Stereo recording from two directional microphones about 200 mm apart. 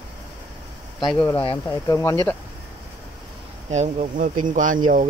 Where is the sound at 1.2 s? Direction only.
10° left (ahead or behind).